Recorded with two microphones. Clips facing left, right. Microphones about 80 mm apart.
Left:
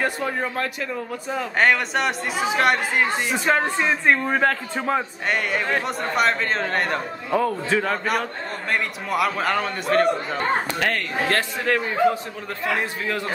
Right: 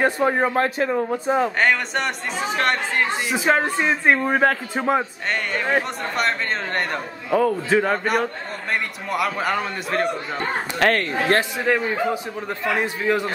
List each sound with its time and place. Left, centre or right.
0.0 s a man's voice: right
1.6 s a man's voice: centre
5.3 s a man's voice: centre
10.8 s speech: right
11.2 s a man's voice: centre